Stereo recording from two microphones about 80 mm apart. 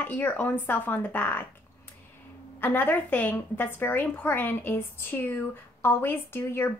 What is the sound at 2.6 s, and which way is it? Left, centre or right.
Speech, left.